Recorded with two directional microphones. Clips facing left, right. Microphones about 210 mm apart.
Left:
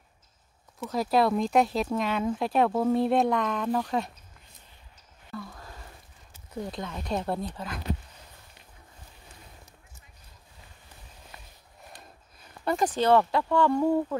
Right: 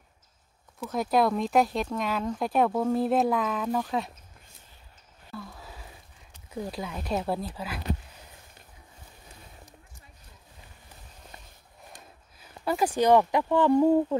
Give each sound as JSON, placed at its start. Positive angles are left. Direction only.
{"t": 0.7, "sound": "speech", "side_deg": 0}
{"t": 5.3, "sound": "a sound", "side_deg": -5}
{"t": 6.5, "sound": "speech", "side_deg": -5}
{"t": 12.6, "sound": "speech", "side_deg": -5}